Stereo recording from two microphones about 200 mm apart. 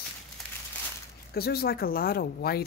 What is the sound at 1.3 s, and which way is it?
Speech, 50° left (ahead or behind).